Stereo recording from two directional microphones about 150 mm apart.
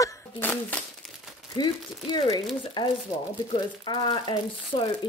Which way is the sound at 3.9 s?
30° left (ahead or behind).